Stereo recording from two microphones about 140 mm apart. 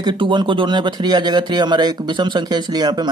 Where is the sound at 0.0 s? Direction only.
35° right (ahead or behind).